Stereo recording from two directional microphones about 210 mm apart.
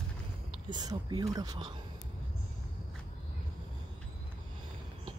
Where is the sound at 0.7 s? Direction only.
20° right (ahead or behind).